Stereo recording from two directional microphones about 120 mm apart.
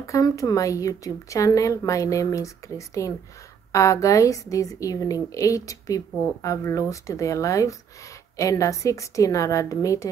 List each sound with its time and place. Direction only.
0.0 s a woman's voice: 25° left (ahead or behind)